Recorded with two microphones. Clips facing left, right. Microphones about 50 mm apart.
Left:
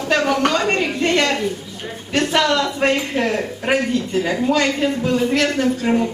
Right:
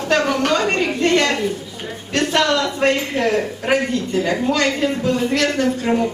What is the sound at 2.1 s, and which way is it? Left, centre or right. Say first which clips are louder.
A woman's voice: even; centre.